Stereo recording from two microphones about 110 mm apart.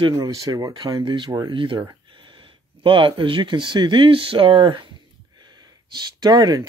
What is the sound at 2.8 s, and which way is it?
Speech, 50° right (ahead or behind).